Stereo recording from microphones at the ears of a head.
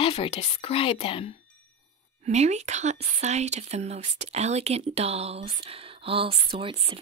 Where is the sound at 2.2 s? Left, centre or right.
Right.